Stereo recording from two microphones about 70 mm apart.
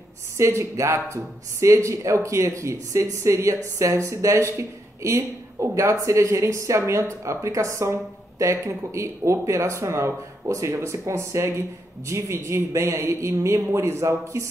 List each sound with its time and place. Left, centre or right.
0.4 s speech: right